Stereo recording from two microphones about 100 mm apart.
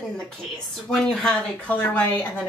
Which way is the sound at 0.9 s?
5° left (ahead or behind).